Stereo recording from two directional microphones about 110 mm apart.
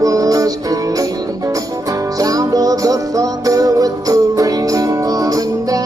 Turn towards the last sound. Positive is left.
turn(degrees=-30)  # may be behind; listen again after turning